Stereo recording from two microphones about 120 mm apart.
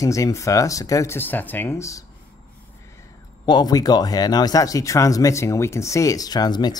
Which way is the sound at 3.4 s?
35° left (ahead or behind).